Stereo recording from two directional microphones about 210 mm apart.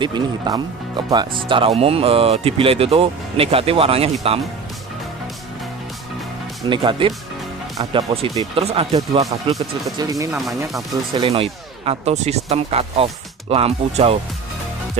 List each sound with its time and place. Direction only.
0.0 s speech: 20° right (ahead or behind)
6.7 s speech: 25° right (ahead or behind)
9.9 s speech: 15° right (ahead or behind)
11.2 s speech: 30° right (ahead or behind)